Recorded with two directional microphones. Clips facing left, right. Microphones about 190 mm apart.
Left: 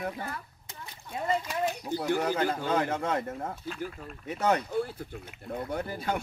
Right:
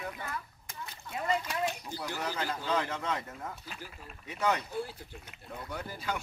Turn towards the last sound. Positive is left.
turn(degrees=50)  # may be behind; listen again after turning